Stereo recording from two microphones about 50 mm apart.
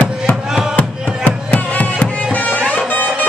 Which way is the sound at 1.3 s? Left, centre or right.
Left.